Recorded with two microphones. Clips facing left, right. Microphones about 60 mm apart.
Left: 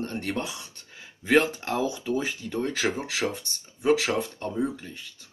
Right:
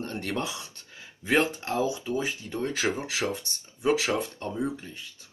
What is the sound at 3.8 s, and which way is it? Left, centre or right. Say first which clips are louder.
Speech: left 2 dB; left.